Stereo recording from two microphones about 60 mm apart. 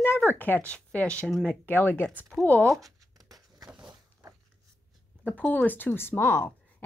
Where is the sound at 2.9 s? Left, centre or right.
Right.